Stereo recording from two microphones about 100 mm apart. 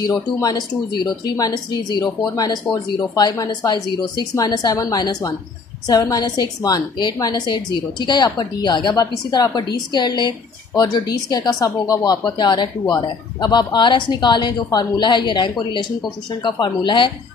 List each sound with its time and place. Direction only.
0.0 s a woman's voice: 40° left (ahead or behind)